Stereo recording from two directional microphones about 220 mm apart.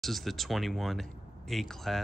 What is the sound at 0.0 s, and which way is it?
Speech, centre (ahead or behind).